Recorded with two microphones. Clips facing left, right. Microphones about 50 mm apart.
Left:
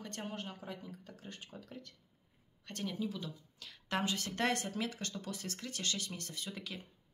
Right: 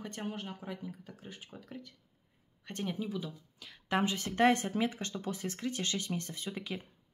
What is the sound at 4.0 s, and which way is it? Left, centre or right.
Speech, right.